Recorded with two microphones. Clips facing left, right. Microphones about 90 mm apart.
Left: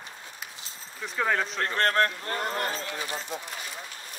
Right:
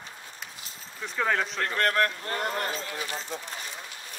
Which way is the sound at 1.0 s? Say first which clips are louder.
Even; centre (ahead or behind).